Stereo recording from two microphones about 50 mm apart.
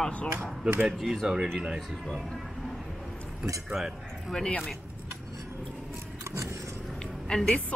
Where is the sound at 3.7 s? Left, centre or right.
Centre.